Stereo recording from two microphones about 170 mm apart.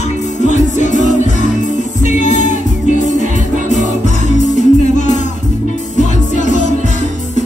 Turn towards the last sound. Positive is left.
turn(degrees=45)  # may be behind; listen again after turning